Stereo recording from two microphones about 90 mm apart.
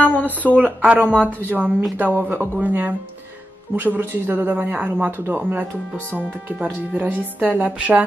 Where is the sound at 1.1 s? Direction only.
20° right (ahead or behind).